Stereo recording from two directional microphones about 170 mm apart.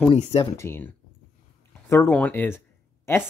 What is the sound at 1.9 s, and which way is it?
Speech, 10° left (ahead or behind).